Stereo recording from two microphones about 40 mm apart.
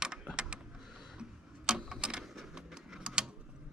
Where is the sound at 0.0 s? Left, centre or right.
Centre.